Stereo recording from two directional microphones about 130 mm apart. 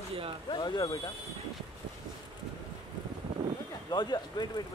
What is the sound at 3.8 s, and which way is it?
Speech, 30° left (ahead or behind).